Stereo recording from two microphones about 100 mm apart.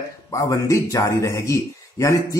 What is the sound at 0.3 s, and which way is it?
Speech, 35° left (ahead or behind).